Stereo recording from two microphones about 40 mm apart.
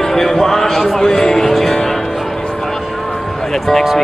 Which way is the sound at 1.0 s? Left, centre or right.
Centre.